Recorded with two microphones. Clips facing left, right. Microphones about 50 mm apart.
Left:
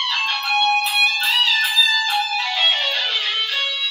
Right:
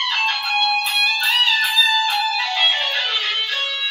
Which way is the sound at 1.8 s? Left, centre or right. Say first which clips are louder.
Right 1 dB; right.